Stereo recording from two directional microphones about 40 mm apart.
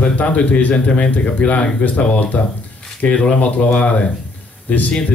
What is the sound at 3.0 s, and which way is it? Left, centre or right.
Speech, left.